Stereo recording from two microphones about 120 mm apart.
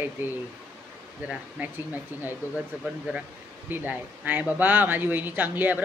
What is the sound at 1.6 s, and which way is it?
Speech, 15° right (ahead or behind).